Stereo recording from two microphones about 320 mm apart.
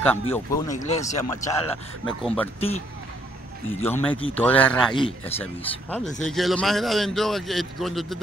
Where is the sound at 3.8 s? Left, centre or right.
Centre.